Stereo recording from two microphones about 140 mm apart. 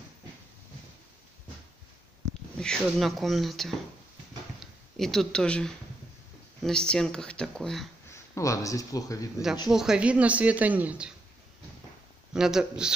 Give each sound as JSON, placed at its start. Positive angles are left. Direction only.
{"t": 2.6, "sound": "speech", "side_deg": 0}
{"t": 8.4, "sound": "speech", "side_deg": 25}
{"t": 9.7, "sound": "a woman's voice", "side_deg": -5}
{"t": 12.4, "sound": "speech", "side_deg": -5}